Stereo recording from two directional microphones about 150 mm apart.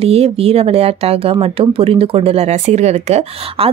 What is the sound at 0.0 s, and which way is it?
A woman's voice, 40° right (ahead or behind).